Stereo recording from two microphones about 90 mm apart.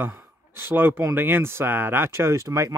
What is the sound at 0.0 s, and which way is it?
Speech, 25° right (ahead or behind).